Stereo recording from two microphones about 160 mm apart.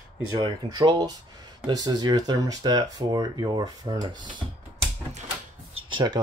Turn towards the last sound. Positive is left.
turn(degrees=-30)  # may be behind; listen again after turning